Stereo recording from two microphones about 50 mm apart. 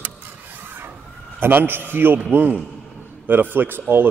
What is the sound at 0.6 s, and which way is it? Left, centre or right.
Filing, right.